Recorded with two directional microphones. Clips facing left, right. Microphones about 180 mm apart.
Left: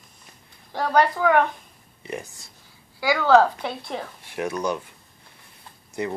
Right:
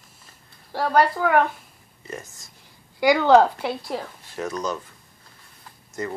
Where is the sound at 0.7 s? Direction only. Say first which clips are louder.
Right 1 dB; 5° right (ahead or behind).